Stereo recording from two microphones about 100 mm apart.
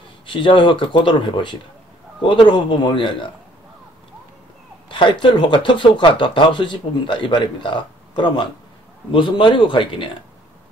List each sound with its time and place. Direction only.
0.3 s speech: 55° left (ahead or behind)
4.8 s speech: 55° left (ahead or behind)